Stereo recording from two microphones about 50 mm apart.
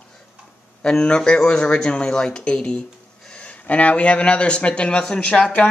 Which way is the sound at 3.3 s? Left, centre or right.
Left.